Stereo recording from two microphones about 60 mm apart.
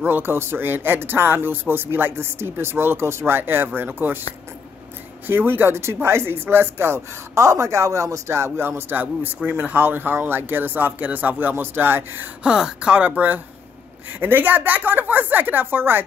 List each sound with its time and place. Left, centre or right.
0.0 s speech: right
5.2 s speech: right
7.4 s speech: right
12.4 s speech: centre; by 16.0 s right